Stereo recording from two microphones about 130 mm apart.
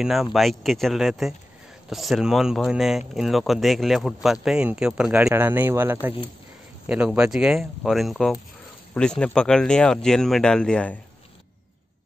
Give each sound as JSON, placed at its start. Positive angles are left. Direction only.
{"t": 0.0, "sound": "speech", "side_deg": 0}